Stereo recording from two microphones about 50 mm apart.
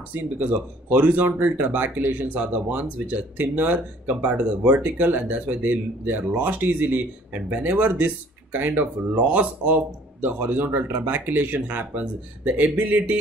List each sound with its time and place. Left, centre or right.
0.1 s speech: right
7.9 s speech: right